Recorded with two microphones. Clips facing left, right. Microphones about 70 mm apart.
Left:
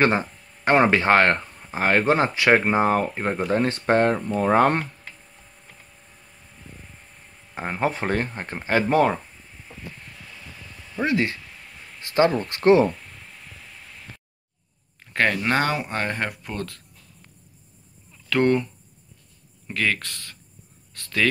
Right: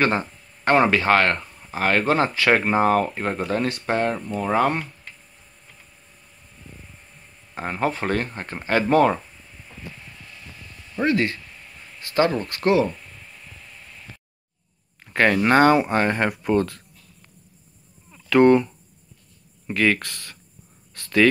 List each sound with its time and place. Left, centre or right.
0.0 s speech: centre
3.6 s speech: left
7.5 s speech: centre
11.0 s speech: centre
12.0 s a sound: left
12.3 s speech: centre
15.1 s speech: centre
18.1 s a sound: centre
19.7 s speech: centre
20.9 s a sound: centre